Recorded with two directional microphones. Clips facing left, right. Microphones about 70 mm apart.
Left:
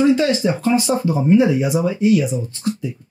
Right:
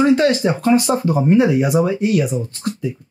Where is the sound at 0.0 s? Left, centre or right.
Right.